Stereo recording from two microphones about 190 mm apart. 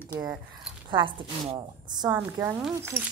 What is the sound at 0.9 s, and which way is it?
Speech, 25° right (ahead or behind).